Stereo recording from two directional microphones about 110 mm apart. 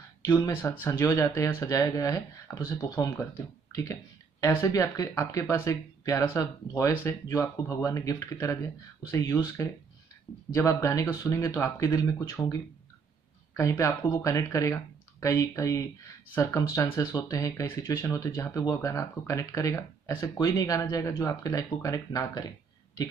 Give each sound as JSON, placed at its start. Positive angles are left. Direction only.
{"t": 0.2, "sound": "speech", "side_deg": 20}
{"t": 13.6, "sound": "speech", "side_deg": 30}